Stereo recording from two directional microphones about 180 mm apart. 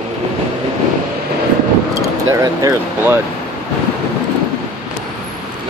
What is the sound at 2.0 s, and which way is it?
Speech, 20° right (ahead or behind).